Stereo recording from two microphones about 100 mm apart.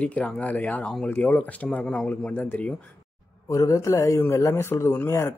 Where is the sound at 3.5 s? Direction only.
30° left (ahead or behind).